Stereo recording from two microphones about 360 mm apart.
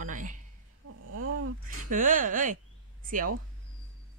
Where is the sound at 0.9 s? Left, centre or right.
Right.